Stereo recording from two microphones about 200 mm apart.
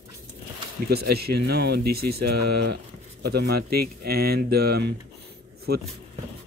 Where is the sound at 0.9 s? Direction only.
50° right (ahead or behind).